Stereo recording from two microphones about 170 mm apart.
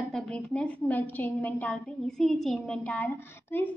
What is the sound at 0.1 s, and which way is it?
A woman's voice, 5° left (ahead or behind).